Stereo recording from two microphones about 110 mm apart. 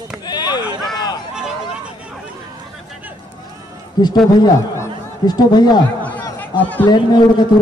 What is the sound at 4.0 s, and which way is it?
Speech, 40° left (ahead or behind).